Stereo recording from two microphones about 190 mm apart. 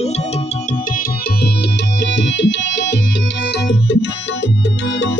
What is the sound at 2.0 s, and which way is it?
Music, 70° left (ahead or behind).